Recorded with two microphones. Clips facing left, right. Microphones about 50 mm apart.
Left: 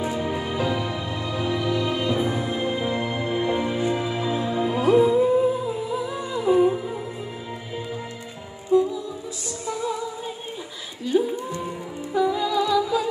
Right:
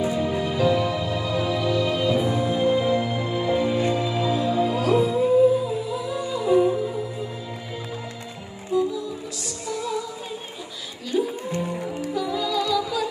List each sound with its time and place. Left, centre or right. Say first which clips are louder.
0.2 s music: right 3 dB; left
8.7 s music: left 4 dB; centre
11.1 s music: left 1 dB; left